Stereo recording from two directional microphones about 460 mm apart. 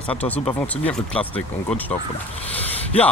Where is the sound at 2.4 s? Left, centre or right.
Centre.